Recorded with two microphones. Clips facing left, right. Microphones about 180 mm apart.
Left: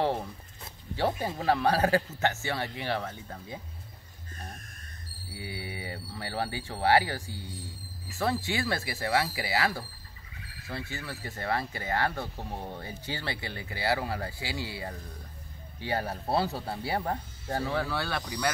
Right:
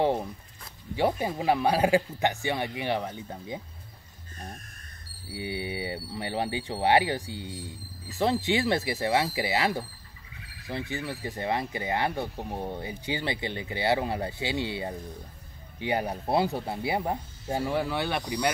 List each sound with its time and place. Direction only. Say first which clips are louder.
0.0 s speech: right 3 dB; 15° right (ahead or behind)
5.3 s speech: right 6 dB; 20° right (ahead or behind)